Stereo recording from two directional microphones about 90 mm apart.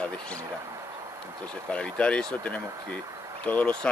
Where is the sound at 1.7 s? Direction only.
15° left (ahead or behind).